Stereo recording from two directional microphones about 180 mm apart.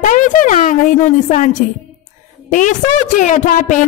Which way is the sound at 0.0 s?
50° left (ahead or behind).